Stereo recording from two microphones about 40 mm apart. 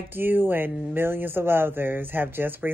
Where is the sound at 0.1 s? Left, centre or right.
Right.